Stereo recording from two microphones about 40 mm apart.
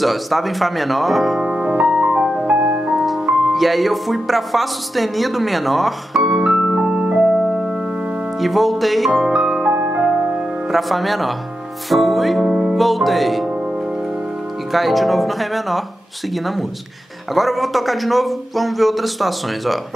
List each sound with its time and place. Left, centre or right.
0.0 s speech: centre
1.4 s piano: centre
2.5 s music: right
3.4 s speech: centre
6.7 s music: centre
7.0 s music: right
8.4 s speech: centre
9.2 s music: centre
9.8 s music: right
10.7 s speech: centre
12.4 s music: centre
12.7 s speech: centre
14.7 s speech: centre
17.3 s speech: centre